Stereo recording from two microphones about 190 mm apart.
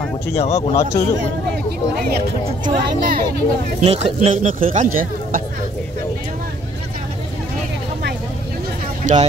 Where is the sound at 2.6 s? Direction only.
50° right (ahead or behind).